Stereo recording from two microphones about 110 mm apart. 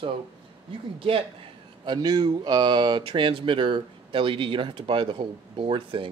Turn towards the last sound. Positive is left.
turn(degrees=-55)  # may be behind; listen again after turning